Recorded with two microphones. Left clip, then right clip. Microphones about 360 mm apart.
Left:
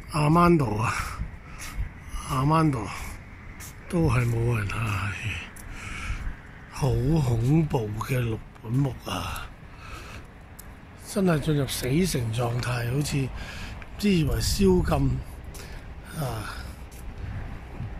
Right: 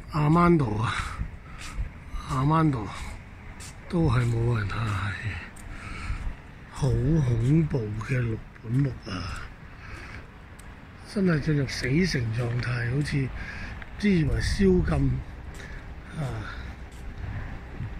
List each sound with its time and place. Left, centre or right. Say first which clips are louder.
0.1 s speech: left 2 dB; centre
2.2 s speech: left 1 dB; centre
3.9 s speech: left 1 dB; centre
11.1 s speech: left 2 dB; centre
16.1 s gasp: left 3 dB; centre